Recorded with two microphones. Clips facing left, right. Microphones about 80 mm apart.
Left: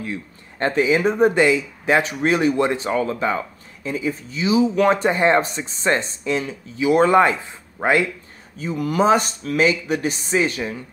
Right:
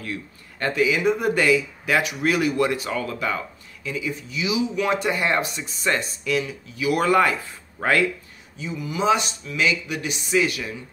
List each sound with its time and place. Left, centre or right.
0.0 s speech: left
8.5 s speech: left